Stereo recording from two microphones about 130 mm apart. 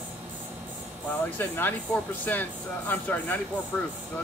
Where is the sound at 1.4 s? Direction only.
15° left (ahead or behind).